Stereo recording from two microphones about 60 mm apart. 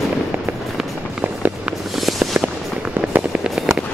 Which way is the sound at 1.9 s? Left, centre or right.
Centre.